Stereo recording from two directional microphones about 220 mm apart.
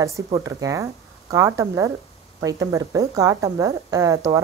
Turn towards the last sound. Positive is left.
turn(degrees=-15)  # may be behind; listen again after turning